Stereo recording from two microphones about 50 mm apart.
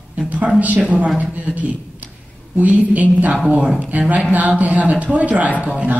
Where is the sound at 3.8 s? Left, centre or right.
Right.